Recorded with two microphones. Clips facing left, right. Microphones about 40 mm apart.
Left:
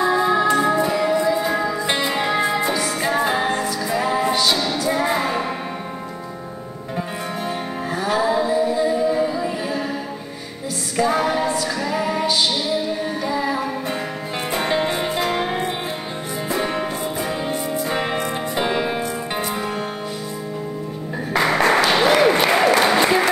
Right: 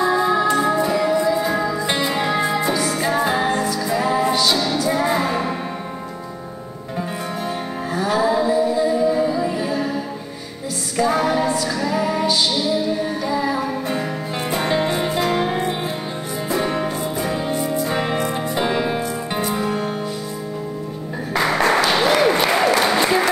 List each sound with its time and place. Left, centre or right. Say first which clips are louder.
0.0 s music: even; left
7.4 s music: even; left
21.3 s applause: left 1 dB; left